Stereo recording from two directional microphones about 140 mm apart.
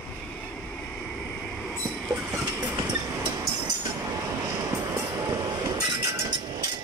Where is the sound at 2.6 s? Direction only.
30° right (ahead or behind).